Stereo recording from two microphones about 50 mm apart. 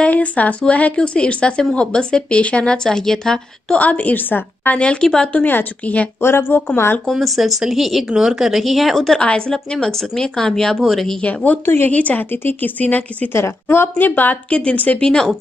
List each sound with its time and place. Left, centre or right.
0.1 s speech: left; by 3.7 s centre
3.7 s a woman's voice: left
4.7 s speech: centre
5.4 s a woman's voice: left
6.2 s speech: left
7.1 s speech: centre
9.2 s speech: centre
11.1 s a woman's voice: left
11.6 s speech: left
11.9 s a woman's voice: left
13.3 s a woman's voice: left
14.5 s speech: left